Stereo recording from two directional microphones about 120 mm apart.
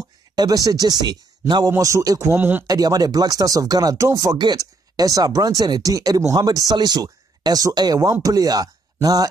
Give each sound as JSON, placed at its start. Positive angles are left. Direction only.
{"t": 0.4, "sound": "speech", "side_deg": -30}
{"t": 2.6, "sound": "speech", "side_deg": -30}